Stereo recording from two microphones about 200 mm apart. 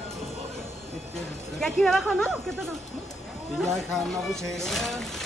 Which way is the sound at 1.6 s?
Centre (ahead or behind).